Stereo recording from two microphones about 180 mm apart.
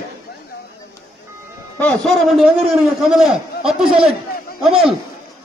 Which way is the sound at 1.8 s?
Centre (ahead or behind).